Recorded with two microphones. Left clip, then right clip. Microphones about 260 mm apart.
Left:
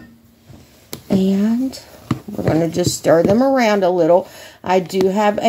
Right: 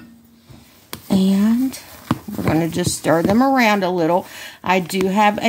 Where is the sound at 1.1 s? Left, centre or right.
Right.